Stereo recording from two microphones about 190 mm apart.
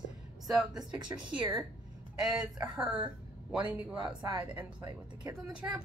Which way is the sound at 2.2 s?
5° right (ahead or behind).